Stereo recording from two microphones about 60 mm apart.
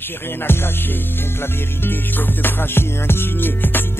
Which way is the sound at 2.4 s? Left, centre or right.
Left.